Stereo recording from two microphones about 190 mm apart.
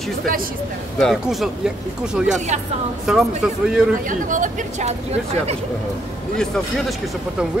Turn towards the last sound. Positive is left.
turn(degrees=0)  # may be behind; listen again after turning